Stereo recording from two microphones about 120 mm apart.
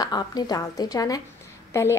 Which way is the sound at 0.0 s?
35° left (ahead or behind).